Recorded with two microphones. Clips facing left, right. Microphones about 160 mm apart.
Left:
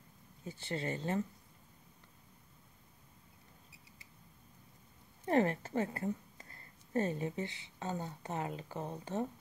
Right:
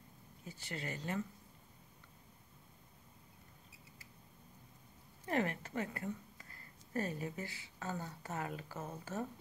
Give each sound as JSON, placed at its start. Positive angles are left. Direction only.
{"t": 0.5, "sound": "speech", "side_deg": 25}
{"t": 5.2, "sound": "a woman's voice", "side_deg": 35}